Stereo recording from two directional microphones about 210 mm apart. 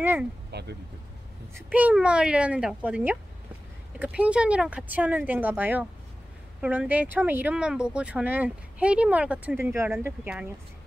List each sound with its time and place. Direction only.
0.0 s speech: 10° right (ahead or behind)
0.5 s a sound: 50° right (ahead or behind)
1.5 s speech: 5° right (ahead or behind)